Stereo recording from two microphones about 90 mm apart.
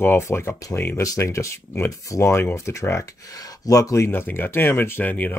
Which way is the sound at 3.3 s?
45° left (ahead or behind).